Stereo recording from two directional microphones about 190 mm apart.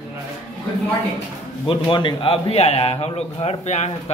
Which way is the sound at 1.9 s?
25° left (ahead or behind).